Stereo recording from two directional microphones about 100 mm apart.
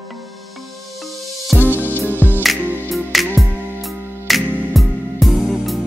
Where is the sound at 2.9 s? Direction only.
Centre (ahead or behind).